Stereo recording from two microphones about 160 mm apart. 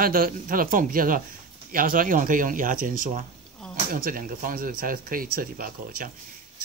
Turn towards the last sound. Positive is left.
turn(degrees=-65)  # may be behind; listen again after turning